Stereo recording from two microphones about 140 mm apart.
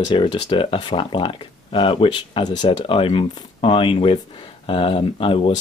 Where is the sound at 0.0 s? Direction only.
35° left (ahead or behind).